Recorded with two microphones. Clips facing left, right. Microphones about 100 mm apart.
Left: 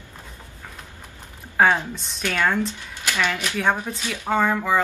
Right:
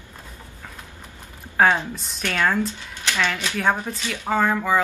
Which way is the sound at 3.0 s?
15° left (ahead or behind).